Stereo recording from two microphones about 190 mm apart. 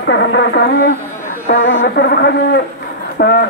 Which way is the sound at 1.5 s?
75° left (ahead or behind).